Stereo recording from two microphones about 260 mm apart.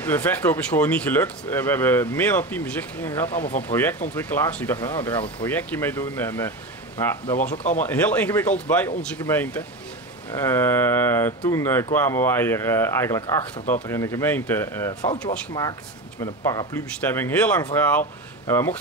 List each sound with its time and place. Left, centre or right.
0.0 s speech: centre